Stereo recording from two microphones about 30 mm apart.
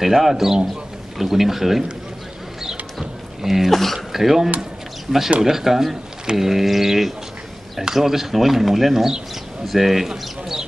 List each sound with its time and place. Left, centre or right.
0.0 s speech: centre
2.6 s a sound: centre
3.7 s speech: centre
4.1 s speech: centre